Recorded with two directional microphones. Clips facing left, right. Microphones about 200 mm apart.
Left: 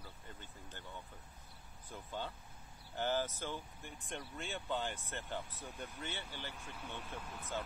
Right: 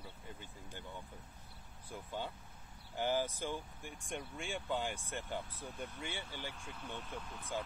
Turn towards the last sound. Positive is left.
turn(degrees=5)  # may be behind; listen again after turning